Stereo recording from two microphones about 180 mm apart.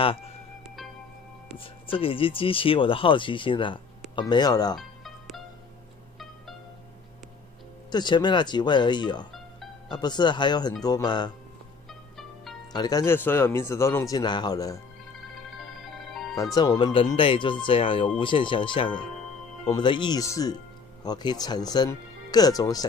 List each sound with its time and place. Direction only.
0.0 s speech: 30° left (ahead or behind)
1.5 s speech: 30° left (ahead or behind)
4.7 s music: centre (ahead or behind)
7.9 s speech: 25° left (ahead or behind)
11.9 s music: centre (ahead or behind)
12.7 s speech: 20° left (ahead or behind)
15.3 s music: centre (ahead or behind)
16.5 s speech: 20° left (ahead or behind)